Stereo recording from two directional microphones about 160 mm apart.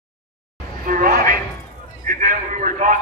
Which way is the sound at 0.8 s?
60° right (ahead or behind).